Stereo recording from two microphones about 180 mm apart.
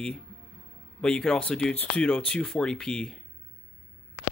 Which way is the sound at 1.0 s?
5° left (ahead or behind).